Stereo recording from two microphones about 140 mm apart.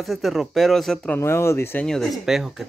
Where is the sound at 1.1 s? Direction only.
20° left (ahead or behind).